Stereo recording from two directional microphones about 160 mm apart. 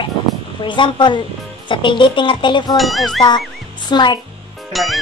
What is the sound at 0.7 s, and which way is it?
A woman's voice, 30° left (ahead or behind).